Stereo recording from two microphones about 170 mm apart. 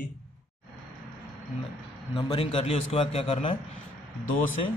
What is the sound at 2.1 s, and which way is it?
A man's voice, 30° left (ahead or behind).